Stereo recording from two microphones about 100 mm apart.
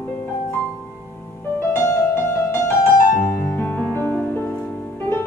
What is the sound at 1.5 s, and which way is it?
Music, 25° left (ahead or behind).